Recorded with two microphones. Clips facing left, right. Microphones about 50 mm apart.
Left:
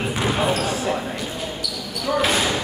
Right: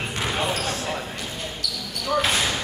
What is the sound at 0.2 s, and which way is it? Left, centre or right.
Basketball bounce, centre.